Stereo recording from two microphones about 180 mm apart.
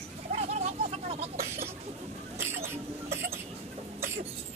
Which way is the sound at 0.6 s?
40° right (ahead or behind).